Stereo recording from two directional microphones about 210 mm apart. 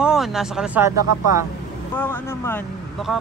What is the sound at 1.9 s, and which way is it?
Speech, 10° left (ahead or behind).